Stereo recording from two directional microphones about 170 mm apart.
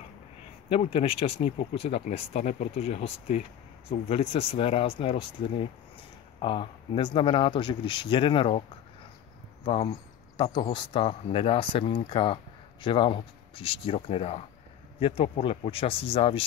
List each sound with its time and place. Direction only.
0.7 s speech: 35° left (ahead or behind)
9.7 s speech: 35° left (ahead or behind)